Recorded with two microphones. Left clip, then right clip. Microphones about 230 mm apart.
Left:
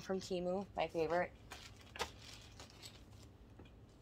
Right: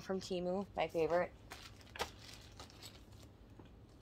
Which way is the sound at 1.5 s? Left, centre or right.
Right.